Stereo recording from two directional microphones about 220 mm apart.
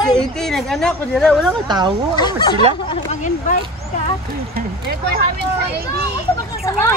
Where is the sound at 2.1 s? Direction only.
20° left (ahead or behind).